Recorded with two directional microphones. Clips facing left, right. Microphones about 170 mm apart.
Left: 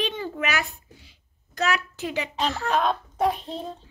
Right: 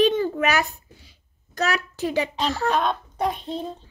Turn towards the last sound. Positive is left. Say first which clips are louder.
# left 1 dB
turn(degrees=0)  # may be behind; listen again after turning